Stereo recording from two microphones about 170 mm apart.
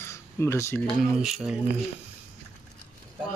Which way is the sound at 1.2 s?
5° right (ahead or behind).